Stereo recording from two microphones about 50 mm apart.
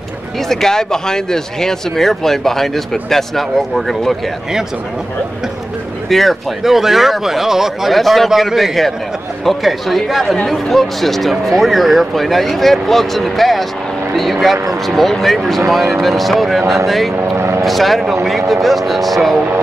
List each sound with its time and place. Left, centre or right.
0.5 s speech: centre
6.0 s speech: centre
10.2 s speech: centre
10.5 s speech: centre
17.1 s vehicle: right
17.6 s speech: centre